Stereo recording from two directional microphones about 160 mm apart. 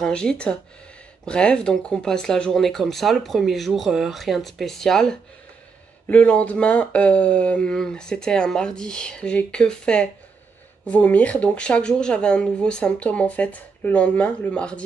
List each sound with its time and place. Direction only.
0.0 s speech: 5° left (ahead or behind)